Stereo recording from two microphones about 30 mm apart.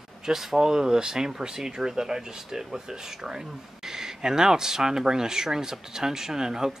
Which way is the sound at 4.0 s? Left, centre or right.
Centre.